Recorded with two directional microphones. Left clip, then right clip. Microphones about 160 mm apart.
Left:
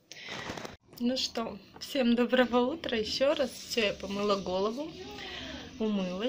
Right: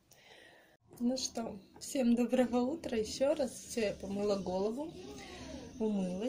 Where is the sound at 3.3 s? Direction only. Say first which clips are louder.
Left 5 dB; 10° right (ahead or behind).